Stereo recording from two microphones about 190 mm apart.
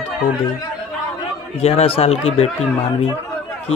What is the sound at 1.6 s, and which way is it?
Speech, 30° left (ahead or behind).